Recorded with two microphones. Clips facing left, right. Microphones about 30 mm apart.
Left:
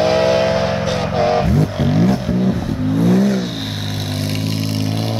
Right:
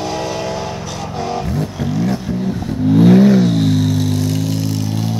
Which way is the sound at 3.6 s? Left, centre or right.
Left.